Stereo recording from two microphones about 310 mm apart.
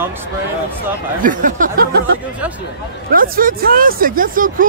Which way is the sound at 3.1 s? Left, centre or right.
Right.